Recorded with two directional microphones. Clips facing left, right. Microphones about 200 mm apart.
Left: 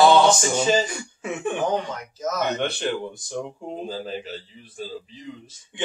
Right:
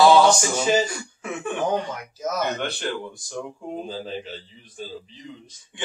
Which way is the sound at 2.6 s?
20° left (ahead or behind).